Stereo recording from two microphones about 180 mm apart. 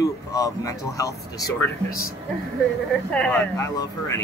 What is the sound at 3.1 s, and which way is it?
Speech, 10° left (ahead or behind).